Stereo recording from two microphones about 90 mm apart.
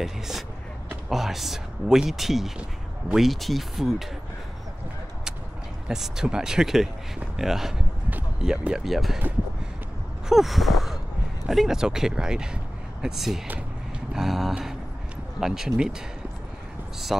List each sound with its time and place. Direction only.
0.0 s speech: 5° right (ahead or behind)
5.9 s speech: 5° right (ahead or behind)
10.2 s gasp: centre (ahead or behind)
11.4 s speech: 5° right (ahead or behind)
17.1 s speech: 5° right (ahead or behind)